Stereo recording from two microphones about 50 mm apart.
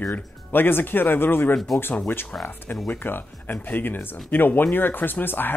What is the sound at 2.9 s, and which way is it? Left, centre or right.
Speech, left.